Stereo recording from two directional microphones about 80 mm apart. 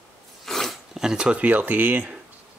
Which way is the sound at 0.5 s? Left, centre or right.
Centre.